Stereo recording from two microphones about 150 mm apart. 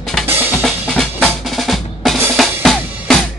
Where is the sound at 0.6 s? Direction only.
5° left (ahead or behind).